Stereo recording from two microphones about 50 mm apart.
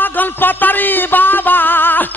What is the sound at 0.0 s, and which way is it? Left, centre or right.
Music, left.